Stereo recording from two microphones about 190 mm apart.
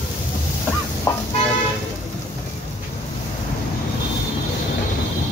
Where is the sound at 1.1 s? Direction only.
15° left (ahead or behind).